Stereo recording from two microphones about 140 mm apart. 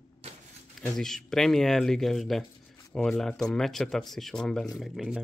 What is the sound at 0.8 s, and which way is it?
Speech, 5° left (ahead or behind).